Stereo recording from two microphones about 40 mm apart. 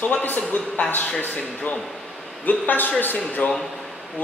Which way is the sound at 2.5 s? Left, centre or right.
Left.